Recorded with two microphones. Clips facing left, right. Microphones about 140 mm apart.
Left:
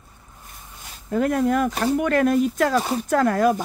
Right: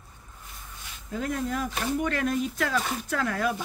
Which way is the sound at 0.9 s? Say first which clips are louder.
Left 9 dB; 55° left (ahead or behind).